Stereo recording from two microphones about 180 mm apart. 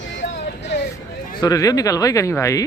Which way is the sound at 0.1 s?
80° left.